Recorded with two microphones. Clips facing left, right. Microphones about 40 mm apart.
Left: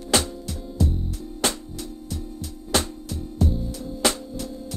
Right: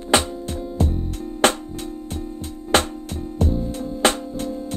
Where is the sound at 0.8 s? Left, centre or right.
Right.